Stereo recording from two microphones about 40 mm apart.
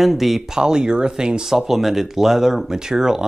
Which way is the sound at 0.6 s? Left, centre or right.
Centre.